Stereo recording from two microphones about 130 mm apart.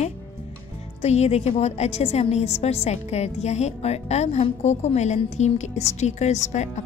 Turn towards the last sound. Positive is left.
turn(degrees=60)  # may be behind; listen again after turning